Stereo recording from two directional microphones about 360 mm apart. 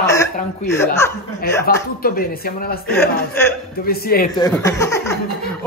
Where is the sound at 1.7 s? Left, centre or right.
Left.